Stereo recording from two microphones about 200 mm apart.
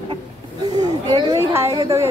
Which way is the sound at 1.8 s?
15° right (ahead or behind).